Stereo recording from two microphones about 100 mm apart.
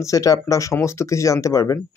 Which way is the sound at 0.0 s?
35° left (ahead or behind).